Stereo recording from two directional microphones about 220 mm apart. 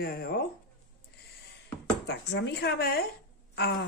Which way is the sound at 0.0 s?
45° left (ahead or behind).